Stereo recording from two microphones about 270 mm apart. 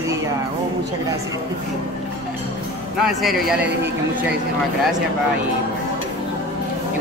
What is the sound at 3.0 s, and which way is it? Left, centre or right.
Speech, centre.